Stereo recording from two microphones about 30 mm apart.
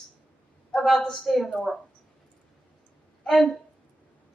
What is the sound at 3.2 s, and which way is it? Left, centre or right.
Speech, left.